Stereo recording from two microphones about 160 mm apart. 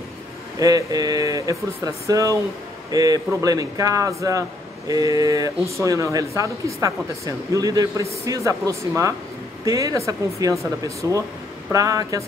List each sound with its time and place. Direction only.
0.6 s speech: 20° right (ahead or behind)